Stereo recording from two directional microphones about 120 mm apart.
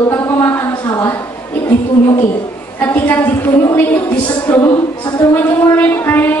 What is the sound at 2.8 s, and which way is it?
Speech, 15° left (ahead or behind).